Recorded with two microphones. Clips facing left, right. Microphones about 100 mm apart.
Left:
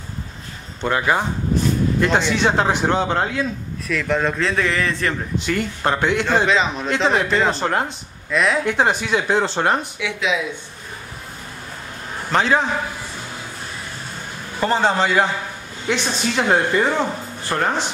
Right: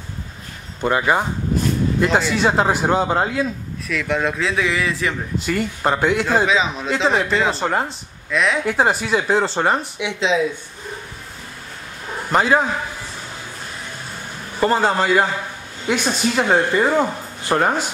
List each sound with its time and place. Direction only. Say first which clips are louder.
0.7 s a man's voice: right 1 dB; 5° right (ahead or behind)
9.9 s speech: right 2 dB; 20° right (ahead or behind)
12.3 s a man's voice: right 1 dB; 5° right (ahead or behind)
14.6 s a man's voice: right 1 dB; 5° right (ahead or behind)